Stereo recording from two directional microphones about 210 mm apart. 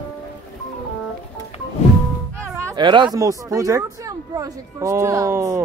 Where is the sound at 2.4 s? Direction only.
15° right (ahead or behind).